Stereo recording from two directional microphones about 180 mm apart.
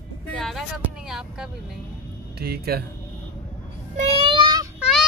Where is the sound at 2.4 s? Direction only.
60° right (ahead or behind).